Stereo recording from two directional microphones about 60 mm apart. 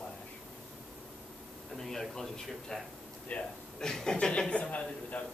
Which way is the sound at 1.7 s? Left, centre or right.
Centre.